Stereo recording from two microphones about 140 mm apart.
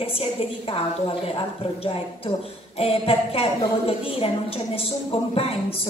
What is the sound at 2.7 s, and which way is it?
A woman's voice, 45° left (ahead or behind).